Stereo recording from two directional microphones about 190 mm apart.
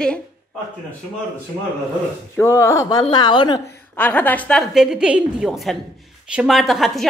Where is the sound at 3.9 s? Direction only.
10° left (ahead or behind).